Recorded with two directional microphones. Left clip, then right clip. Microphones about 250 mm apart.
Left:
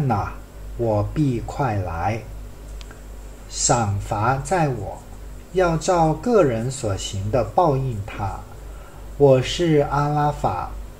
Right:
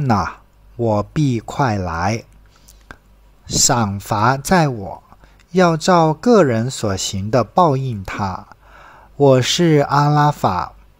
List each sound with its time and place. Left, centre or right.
0.8 s speech: right
3.4 s speech: right